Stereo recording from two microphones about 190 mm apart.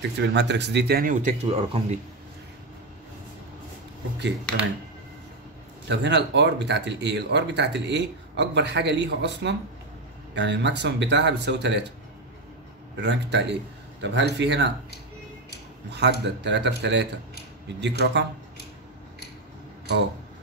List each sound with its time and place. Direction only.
0.2 s speech: 65° right (ahead or behind); by 2.0 s 30° right (ahead or behind)
5.9 s speech: 65° right (ahead or behind)
12.9 s speech: 65° right (ahead or behind)
15.9 s speech: 60° right (ahead or behind)